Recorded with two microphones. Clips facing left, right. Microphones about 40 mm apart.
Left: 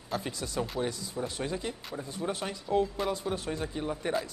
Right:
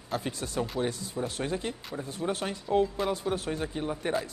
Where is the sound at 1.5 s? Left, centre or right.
Right.